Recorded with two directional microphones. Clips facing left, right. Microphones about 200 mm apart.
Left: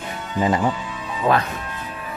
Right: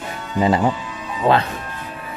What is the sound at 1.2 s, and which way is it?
Speech, 30° right (ahead or behind).